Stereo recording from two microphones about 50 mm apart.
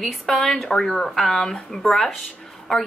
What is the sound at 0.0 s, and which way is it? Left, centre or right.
A woman's voice, centre.